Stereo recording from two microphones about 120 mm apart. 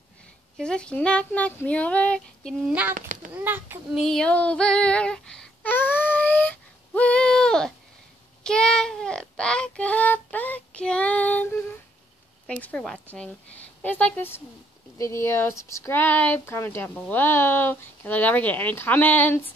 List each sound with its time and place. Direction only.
0.6 s child singing: 5° left (ahead or behind)
2.6 s a child's voice: 10° right (ahead or behind)
2.9 s a child's voice: 90° right
3.4 s a child's voice: 20° right (ahead or behind)
3.9 s female singing: centre (ahead or behind)
8.5 s child singing: 5° left (ahead or behind)
12.4 s child singing: 10° left (ahead or behind)
15.0 s speech: 25° left (ahead or behind)
17.1 s child singing: 20° left (ahead or behind)